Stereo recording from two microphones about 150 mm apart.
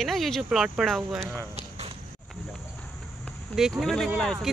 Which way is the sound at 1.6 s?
45° right (ahead or behind).